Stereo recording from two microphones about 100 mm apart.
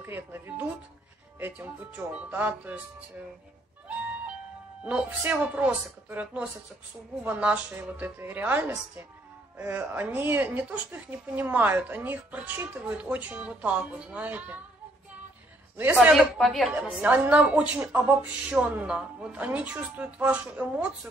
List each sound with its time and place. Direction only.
0.0 s a woman's voice: 20° right (ahead or behind)
4.8 s a woman's voice: 15° right (ahead or behind)
15.8 s a woman's voice: 20° right (ahead or behind)
16.3 s a woman's voice: centre (ahead or behind)
16.6 s a woman's voice: 15° right (ahead or behind)